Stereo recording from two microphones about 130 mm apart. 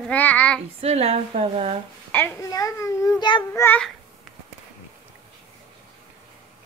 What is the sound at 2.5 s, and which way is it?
Speech, 25° left (ahead or behind).